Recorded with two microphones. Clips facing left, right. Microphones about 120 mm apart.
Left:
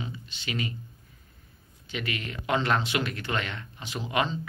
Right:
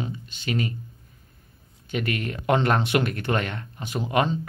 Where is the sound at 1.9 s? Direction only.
50° right (ahead or behind).